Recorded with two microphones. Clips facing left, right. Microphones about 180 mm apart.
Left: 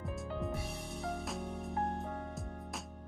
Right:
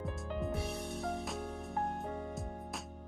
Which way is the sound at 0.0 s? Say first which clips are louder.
Right 1 dB; centre (ahead or behind).